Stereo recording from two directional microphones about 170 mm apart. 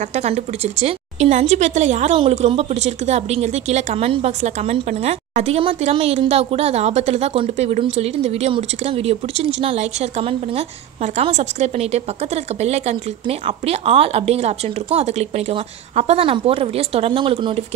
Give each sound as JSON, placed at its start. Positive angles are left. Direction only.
{"t": 0.1, "sound": "speech", "side_deg": -40}
{"t": 11.1, "sound": "speech", "side_deg": -40}